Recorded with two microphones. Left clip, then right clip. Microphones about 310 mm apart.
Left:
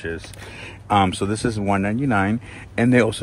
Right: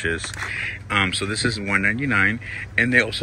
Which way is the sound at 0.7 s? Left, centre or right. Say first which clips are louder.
Left 5 dB; centre.